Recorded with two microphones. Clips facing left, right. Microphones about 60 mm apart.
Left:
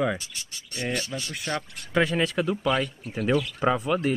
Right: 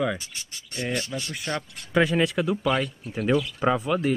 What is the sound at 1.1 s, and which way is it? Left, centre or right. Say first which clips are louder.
Speech: even; centre.